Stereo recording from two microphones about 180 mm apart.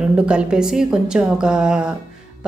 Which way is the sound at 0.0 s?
5° right (ahead or behind).